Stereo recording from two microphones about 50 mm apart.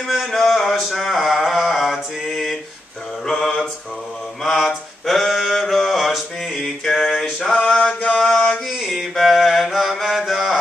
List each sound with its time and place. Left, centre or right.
0.0 s a sound: centre
3.3 s mantra: centre
4.4 s mantra: centre
6.6 s a sound: centre
7.5 s mantra: left
8.2 s mantra: centre
8.6 s mantra: centre